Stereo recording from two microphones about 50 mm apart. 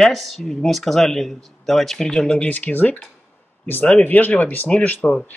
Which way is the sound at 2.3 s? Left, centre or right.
Left.